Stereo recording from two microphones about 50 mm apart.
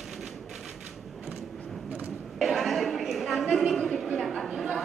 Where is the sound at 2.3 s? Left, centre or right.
Centre.